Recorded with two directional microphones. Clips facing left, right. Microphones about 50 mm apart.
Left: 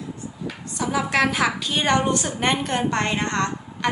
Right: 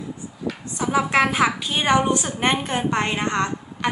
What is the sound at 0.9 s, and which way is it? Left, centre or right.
A woman's voice, centre.